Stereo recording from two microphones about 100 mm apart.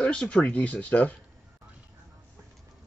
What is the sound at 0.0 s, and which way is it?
Speech, 10° left (ahead or behind).